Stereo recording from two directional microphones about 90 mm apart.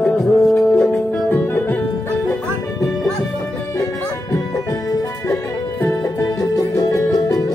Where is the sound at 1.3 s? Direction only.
20° left (ahead or behind).